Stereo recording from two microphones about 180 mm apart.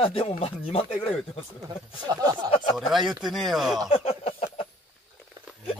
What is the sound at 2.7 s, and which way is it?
Speech, centre (ahead or behind).